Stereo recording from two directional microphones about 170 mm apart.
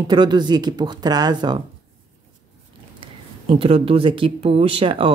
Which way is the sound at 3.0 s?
35° right (ahead or behind).